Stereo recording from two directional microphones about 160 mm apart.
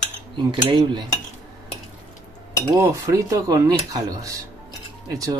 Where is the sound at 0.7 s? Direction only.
25° right (ahead or behind).